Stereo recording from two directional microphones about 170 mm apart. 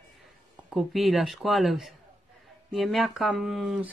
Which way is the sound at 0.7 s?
Centre (ahead or behind).